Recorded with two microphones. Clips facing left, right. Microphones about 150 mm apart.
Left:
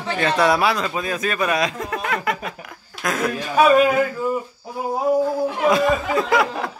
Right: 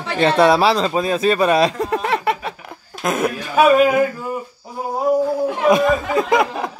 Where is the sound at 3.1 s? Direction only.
25° right (ahead or behind).